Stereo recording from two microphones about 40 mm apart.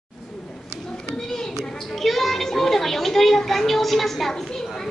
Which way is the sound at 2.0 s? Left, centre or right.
Centre.